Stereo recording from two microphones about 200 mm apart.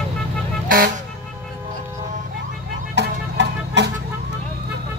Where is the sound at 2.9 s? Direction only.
60° right (ahead or behind).